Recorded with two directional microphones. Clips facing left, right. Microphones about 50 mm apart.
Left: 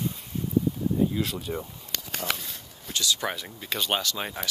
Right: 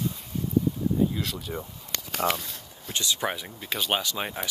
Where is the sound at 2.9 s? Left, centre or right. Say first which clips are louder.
Even; right.